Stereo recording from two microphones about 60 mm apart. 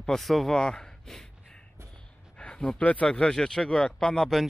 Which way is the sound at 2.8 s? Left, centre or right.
Left.